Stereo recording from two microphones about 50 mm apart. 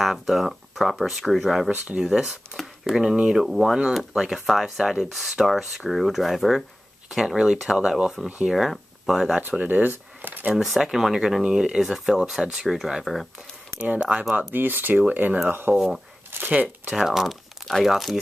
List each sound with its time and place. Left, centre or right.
0.0 s speech: centre
2.6 s a sound: centre
3.3 s speech: centre
7.1 s speech: centre
9.4 s speech: right
10.5 s speech: centre
13.7 s speech: right
14.5 s speech: right
15.7 s speech: right
16.3 s crumpling: right
16.9 s speech: centre